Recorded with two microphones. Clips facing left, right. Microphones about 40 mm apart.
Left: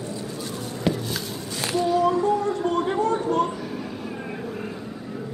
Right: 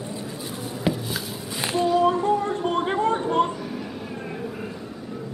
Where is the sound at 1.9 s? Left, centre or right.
Right.